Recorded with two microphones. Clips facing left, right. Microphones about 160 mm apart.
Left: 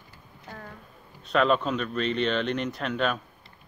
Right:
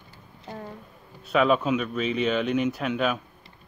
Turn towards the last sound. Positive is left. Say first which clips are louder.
# right 2 dB
turn(degrees=-5)  # may be behind; listen again after turning